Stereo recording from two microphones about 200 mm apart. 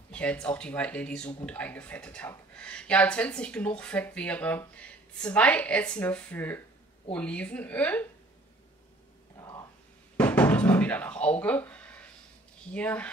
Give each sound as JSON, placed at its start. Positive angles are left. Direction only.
{"t": 0.1, "sound": "speech", "side_deg": 5}
{"t": 9.4, "sound": "a sound", "side_deg": 20}
{"t": 10.1, "sound": "knock", "side_deg": 10}
{"t": 12.7, "sound": "speech", "side_deg": 5}